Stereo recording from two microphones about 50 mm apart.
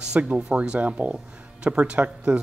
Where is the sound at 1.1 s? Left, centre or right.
Centre.